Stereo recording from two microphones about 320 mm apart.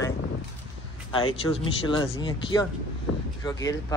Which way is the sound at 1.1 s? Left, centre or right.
Centre.